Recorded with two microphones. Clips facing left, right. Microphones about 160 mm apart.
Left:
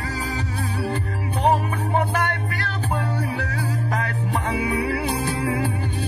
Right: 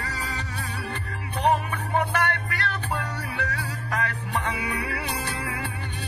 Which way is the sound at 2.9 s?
35° left (ahead or behind).